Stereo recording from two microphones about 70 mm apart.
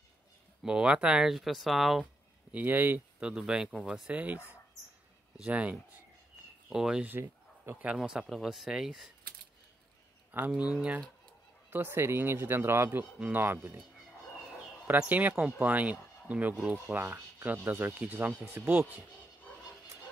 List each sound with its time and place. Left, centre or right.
0.7 s speech: centre
2.5 s speech: right
3.2 s speech: centre
5.4 s speech: centre
6.7 s speech: centre
7.1 s a sound: right
7.8 s speech: centre
10.3 s speech: right
11.7 s speech: right
14.9 s speech: right
18.6 s speech: centre